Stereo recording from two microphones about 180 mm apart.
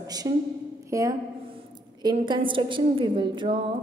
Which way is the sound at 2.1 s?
25° right (ahead or behind).